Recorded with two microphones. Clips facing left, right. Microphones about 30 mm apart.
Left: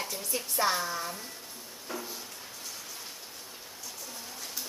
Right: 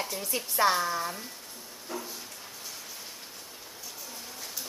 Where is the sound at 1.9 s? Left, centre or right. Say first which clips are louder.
Right 1 dB; centre.